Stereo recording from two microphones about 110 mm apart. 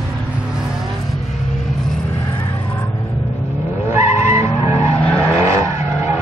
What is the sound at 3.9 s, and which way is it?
Vehicle, 25° right (ahead or behind).